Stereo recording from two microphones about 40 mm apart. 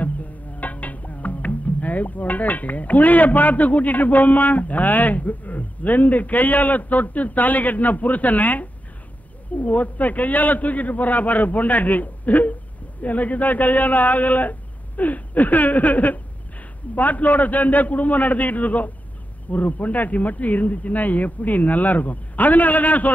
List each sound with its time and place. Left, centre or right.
0.0 s speech: left